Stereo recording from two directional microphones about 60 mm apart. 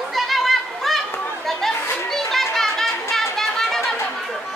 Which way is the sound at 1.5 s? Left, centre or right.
Centre.